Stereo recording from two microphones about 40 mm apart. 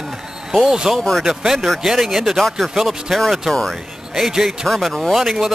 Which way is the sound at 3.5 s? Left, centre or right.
Centre.